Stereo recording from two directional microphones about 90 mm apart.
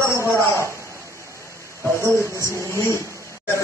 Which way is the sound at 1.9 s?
25° right (ahead or behind).